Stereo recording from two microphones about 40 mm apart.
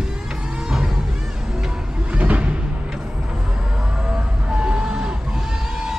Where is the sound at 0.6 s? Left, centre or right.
Centre.